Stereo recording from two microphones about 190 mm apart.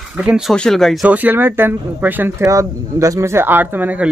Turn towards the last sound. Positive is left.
turn(degrees=-10)  # may be behind; listen again after turning